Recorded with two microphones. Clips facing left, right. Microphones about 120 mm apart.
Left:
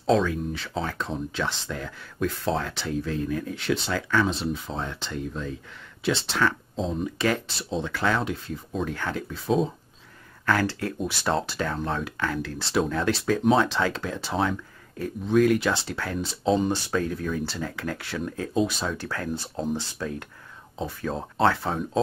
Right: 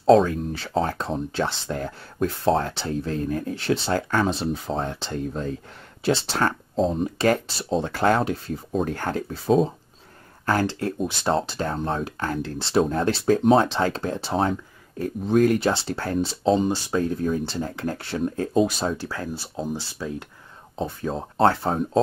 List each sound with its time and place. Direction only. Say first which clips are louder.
0.0 s speech: right 6 dB; 45° right (ahead or behind)
18.9 s speech: even; 15° right (ahead or behind)
20.0 s speech: right 1 dB; 20° right (ahead or behind)
21.4 s speech: right 3 dB; 40° right (ahead or behind)